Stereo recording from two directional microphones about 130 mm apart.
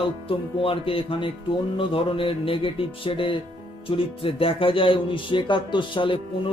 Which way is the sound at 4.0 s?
45° left (ahead or behind).